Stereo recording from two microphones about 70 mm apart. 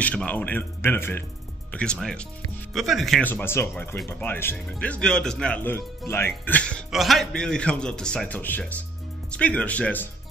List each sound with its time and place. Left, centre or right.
0.0 s speech: centre; by 1.2 s left
1.7 s speech: centre
3.2 s speech: left
4.6 s speech: centre
5.6 s speech: left
6.5 s speech: centre
6.9 s speech: centre
7.3 s speech: centre
8.3 s speech: left